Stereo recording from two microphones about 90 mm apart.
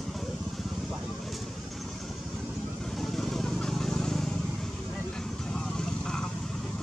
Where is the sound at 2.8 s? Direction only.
Centre (ahead or behind).